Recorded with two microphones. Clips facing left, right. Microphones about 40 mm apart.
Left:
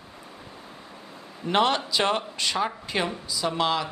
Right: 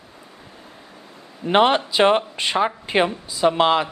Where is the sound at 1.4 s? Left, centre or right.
Right.